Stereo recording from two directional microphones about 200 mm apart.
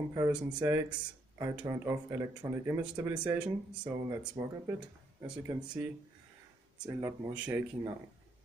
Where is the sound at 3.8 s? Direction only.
15° right (ahead or behind).